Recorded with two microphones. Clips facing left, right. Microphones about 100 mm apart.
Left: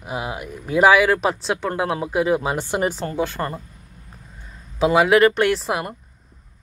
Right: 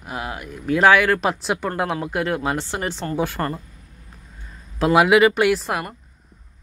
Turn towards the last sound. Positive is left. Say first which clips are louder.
# right 1 dB
turn(degrees=0)  # may be behind; listen again after turning